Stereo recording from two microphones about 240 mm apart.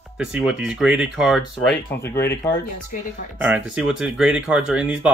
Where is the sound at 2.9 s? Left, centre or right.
Left.